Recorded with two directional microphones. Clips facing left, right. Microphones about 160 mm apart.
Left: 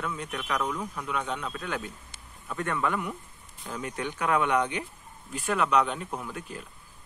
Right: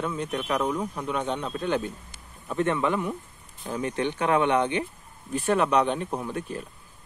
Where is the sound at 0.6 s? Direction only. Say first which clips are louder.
Right 4 dB; 20° right (ahead or behind).